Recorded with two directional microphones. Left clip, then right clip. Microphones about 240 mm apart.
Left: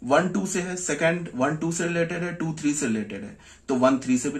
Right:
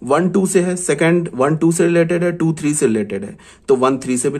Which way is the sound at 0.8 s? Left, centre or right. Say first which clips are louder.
Right 8 dB; right.